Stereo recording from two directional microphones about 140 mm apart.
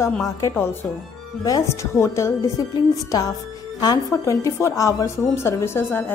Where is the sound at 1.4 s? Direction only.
20° left (ahead or behind).